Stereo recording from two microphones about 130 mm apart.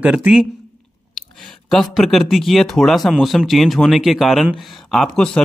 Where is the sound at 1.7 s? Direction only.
Centre (ahead or behind).